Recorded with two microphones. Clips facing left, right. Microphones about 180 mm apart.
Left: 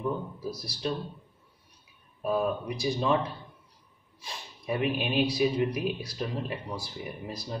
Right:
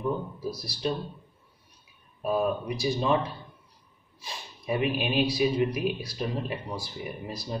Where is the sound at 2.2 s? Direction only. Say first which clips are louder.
Right 1 dB; 10° right (ahead or behind).